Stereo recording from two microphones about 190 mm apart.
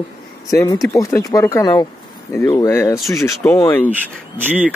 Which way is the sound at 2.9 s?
Centre (ahead or behind).